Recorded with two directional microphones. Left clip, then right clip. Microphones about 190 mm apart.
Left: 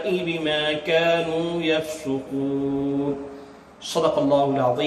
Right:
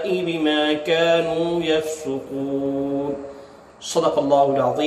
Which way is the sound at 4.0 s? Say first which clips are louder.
Right 2 dB; 10° right (ahead or behind).